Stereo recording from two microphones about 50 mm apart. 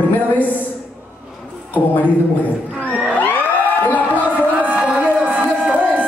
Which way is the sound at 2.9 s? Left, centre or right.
Centre.